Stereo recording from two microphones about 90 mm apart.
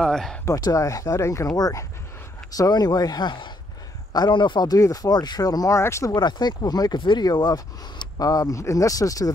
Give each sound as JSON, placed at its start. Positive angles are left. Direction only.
{"t": 0.0, "sound": "speech", "side_deg": 5}
{"t": 0.6, "sound": "speech", "side_deg": 40}
{"t": 5.8, "sound": "speech", "side_deg": 30}
{"t": 6.1, "sound": "speech", "side_deg": 55}